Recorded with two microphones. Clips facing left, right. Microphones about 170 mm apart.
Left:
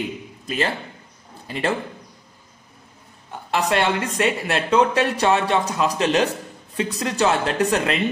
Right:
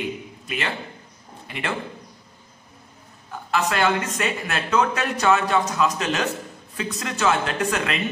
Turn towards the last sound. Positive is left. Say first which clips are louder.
# left 4 dB
turn(degrees=35)  # may be behind; listen again after turning